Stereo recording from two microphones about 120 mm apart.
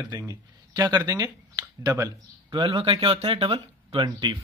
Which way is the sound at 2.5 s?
45° right (ahead or behind).